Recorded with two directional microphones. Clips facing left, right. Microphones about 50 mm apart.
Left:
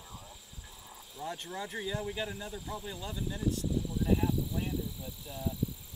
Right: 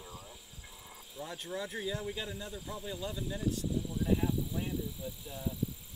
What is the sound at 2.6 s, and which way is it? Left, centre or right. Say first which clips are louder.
Speech: even; centre.